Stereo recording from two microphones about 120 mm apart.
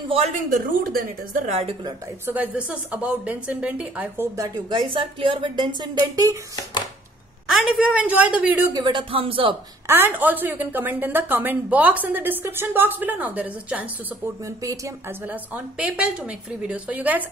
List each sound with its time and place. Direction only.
0.1 s speech: 60° right (ahead or behind)
1.3 s a woman's voice: 80° right; by 1.8 s 65° right (ahead or behind)
2.2 s a woman's voice: 15° right (ahead or behind)
4.4 s speech: 40° right (ahead or behind)
7.4 s a woman's voice: 5° right (ahead or behind)
8.7 s speech: 40° right (ahead or behind)
9.8 s a woman's voice: 15° right (ahead or behind)
14.4 s speech: 25° right (ahead or behind)
15.2 s a woman's voice: 10° right (ahead or behind)